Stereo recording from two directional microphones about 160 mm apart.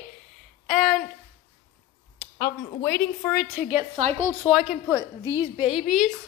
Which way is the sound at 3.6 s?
15° right (ahead or behind).